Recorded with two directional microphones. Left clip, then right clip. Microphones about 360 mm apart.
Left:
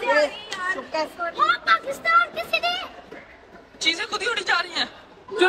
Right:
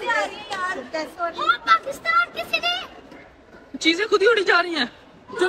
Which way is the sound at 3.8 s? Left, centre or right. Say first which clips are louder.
Right 5 dB; centre.